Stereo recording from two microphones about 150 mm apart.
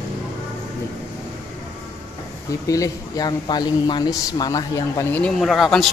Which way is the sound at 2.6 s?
20° left (ahead or behind).